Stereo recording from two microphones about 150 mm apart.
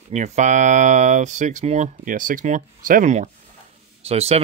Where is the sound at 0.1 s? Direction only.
50° right (ahead or behind).